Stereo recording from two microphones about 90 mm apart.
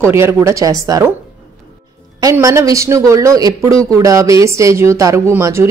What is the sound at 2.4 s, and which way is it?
Speech, 40° right (ahead or behind).